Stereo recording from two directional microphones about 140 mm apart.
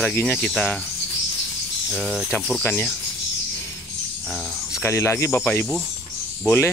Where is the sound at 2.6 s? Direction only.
15° left (ahead or behind).